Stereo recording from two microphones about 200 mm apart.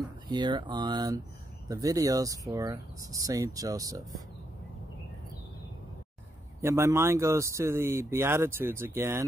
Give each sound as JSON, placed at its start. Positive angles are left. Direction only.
{"t": 0.3, "sound": "speech", "side_deg": -20}
{"t": 6.6, "sound": "speech", "side_deg": -15}